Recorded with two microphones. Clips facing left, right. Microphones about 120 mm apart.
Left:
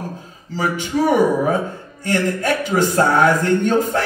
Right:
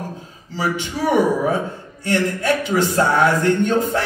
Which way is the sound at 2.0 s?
45° left (ahead or behind).